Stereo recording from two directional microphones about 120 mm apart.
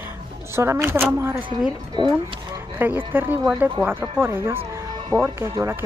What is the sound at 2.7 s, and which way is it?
Speech, 15° right (ahead or behind).